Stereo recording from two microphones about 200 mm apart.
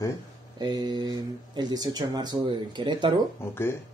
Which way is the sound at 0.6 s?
20° right (ahead or behind).